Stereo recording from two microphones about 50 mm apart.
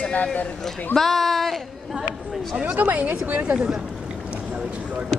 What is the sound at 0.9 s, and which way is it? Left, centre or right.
Speech, centre.